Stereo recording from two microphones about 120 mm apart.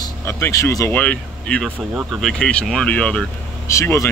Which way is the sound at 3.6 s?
25° left (ahead or behind).